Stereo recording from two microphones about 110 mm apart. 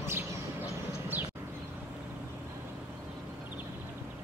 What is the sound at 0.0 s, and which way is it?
Bird, 20° right (ahead or behind).